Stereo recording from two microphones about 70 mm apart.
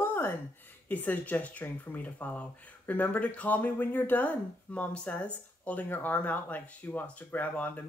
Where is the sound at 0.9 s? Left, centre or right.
Left.